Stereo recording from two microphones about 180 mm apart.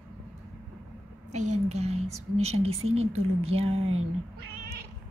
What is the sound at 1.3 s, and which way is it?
A woman's voice, 40° right (ahead or behind).